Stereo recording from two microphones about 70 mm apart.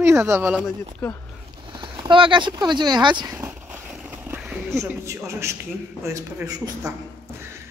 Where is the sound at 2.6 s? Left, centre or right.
Right.